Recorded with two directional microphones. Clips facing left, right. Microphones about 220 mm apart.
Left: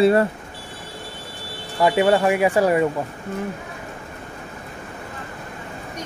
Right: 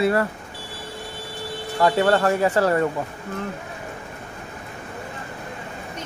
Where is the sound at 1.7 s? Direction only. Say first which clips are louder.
Left 2 dB; 15° left (ahead or behind).